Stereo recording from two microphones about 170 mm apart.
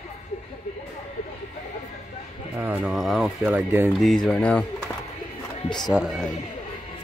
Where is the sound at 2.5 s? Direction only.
5° right (ahead or behind).